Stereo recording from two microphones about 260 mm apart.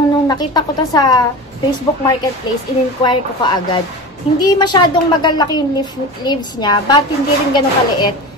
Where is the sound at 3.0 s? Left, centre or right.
Centre.